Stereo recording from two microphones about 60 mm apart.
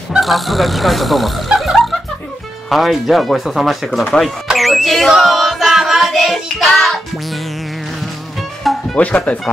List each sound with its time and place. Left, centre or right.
0.2 s speech: centre
4.6 s music: centre
8.9 s speech: left